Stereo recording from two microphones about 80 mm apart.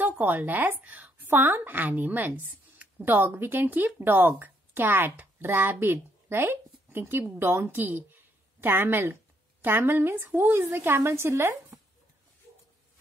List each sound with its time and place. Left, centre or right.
0.0 s a woman's voice: right